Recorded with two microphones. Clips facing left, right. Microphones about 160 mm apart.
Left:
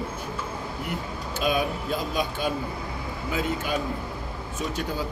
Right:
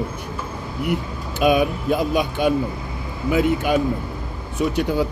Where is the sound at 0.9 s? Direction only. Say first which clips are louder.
Right 7 dB; 65° right (ahead or behind).